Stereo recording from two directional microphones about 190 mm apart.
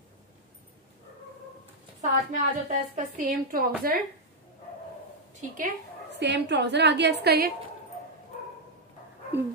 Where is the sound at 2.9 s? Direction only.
45° right (ahead or behind).